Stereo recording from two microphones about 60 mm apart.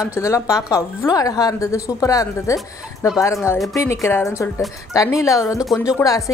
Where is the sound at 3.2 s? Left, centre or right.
Left.